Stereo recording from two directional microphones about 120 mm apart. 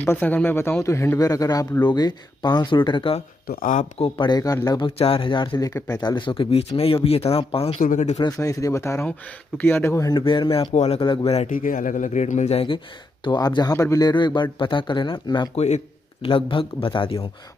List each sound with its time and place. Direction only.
0.0 s speech: 15° left (ahead or behind); by 4.8 s 30° left (ahead or behind)
4.8 s speech: 50° left (ahead or behind)
5.6 s speech: 30° left (ahead or behind); by 7.8 s 55° left (ahead or behind)
7.9 s speech: 75° left (ahead or behind)
8.2 s speech: 30° left (ahead or behind)
10.2 s speech: 45° left (ahead or behind)
10.7 s speech: 65° left (ahead or behind)
11.0 s speech: 50° left (ahead or behind); by 12.6 s 70° left (ahead or behind)
12.6 s speech: 45° left (ahead or behind)
15.5 s speech: 70° left (ahead or behind)
16.3 s speech: 45° left (ahead or behind)